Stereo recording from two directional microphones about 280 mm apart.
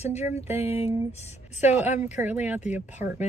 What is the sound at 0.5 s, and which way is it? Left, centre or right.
Speech, centre.